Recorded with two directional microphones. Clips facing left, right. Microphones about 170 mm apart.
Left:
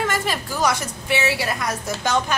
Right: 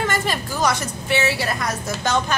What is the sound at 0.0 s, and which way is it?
A woman's voice, 5° left (ahead or behind).